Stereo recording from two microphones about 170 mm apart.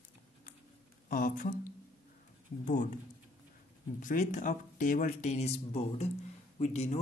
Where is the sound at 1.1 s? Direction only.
55° left (ahead or behind).